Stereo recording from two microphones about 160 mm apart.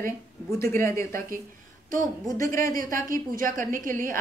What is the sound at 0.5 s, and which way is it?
Speech, 15° left (ahead or behind).